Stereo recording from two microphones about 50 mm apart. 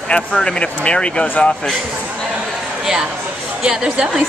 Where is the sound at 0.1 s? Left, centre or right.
Centre.